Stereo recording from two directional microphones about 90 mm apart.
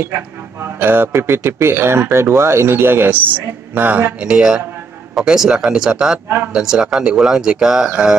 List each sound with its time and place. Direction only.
0.7 s speech: 25° right (ahead or behind); by 8.2 s 10° right (ahead or behind)